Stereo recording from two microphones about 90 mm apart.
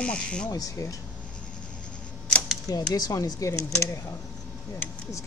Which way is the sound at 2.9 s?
40° left (ahead or behind).